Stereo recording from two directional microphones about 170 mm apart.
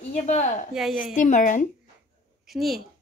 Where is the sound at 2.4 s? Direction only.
Centre (ahead or behind).